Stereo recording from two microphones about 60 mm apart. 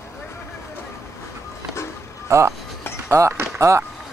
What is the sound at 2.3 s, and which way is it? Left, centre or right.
Speech, right.